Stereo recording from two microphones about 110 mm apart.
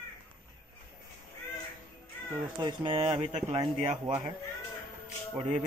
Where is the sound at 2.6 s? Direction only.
45° right (ahead or behind).